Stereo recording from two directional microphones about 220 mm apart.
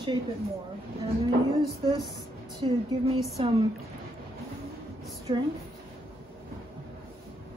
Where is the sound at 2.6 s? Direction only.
25° right (ahead or behind).